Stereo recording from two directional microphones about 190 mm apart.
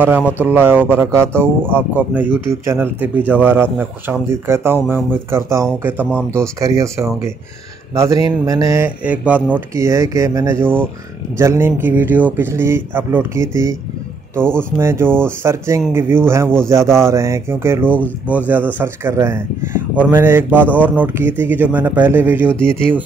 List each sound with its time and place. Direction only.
0.0 s speech: 10° right (ahead or behind)